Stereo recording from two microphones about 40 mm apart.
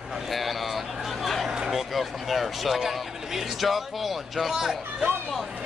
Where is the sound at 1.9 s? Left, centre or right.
Centre.